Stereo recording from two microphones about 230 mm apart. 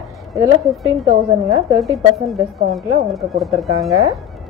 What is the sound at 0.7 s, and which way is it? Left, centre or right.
Speech, centre.